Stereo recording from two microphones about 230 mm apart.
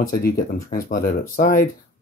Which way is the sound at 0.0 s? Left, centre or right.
Left.